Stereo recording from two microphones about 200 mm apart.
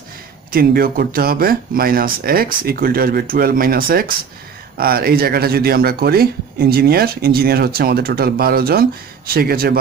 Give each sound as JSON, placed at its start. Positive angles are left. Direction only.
{"t": 0.5, "sound": "speech", "side_deg": -45}